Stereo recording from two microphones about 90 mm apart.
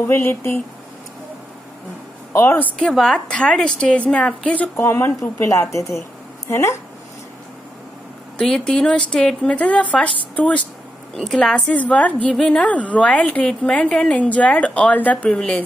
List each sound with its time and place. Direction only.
0.1 s speech: 25° left (ahead or behind)
2.3 s speech: 25° left (ahead or behind)
2.8 s a woman's voice: 10° left (ahead or behind)
4.7 s speech: 25° left (ahead or behind)
8.4 s a woman's voice: 5° left (ahead or behind)
11.1 s a woman's voice: 5° left (ahead or behind)